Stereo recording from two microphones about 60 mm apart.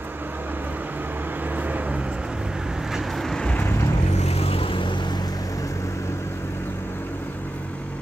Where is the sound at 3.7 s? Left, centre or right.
Left.